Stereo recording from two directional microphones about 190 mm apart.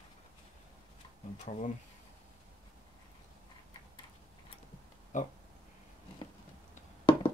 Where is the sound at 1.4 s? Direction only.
40° left (ahead or behind).